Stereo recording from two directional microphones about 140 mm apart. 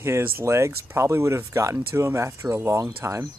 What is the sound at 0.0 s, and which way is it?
Speech, 20° right (ahead or behind).